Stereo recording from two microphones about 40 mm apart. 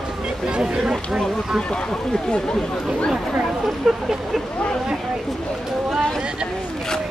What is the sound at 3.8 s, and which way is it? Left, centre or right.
Speech, centre.